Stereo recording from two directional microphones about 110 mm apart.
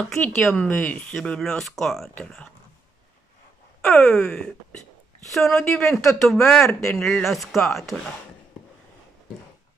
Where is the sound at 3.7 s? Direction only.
5° left (ahead or behind).